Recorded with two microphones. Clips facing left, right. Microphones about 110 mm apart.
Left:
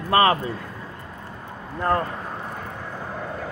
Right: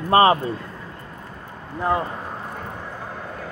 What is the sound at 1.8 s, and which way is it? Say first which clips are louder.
Speech: even; 10° right (ahead or behind).